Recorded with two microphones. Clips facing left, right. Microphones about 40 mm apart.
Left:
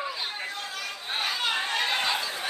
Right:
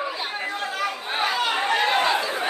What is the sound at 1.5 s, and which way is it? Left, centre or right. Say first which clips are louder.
Chatter: right 7 dB; right.